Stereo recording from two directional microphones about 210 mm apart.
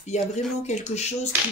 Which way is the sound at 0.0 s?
35° left (ahead or behind).